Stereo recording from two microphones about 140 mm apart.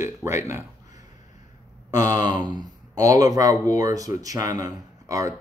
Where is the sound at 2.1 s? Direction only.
60° left (ahead or behind).